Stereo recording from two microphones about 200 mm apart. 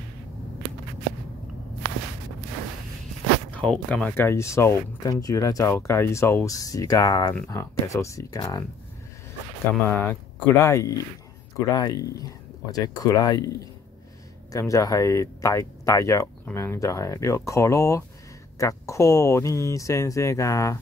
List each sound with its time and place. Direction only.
3.5 s speech: 5° left (ahead or behind)
9.8 s speech: 10° left (ahead or behind)